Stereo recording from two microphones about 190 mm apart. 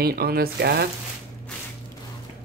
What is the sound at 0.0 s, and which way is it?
Speech, 55° right (ahead or behind).